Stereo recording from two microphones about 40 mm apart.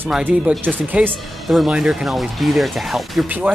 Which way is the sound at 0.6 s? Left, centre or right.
Right.